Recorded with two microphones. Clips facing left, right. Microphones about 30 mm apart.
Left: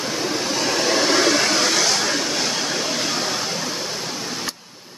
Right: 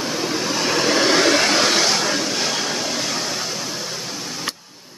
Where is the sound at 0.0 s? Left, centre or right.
Centre.